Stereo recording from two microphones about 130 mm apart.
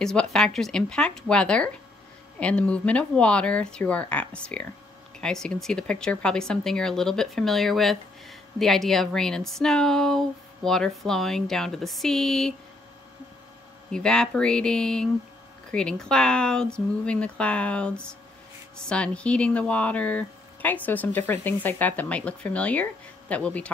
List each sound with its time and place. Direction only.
0.0 s speech: 5° left (ahead or behind)
13.9 s speech: 5° left (ahead or behind)